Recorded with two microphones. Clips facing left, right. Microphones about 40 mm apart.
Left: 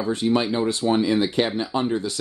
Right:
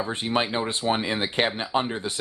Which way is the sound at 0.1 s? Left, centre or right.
Right.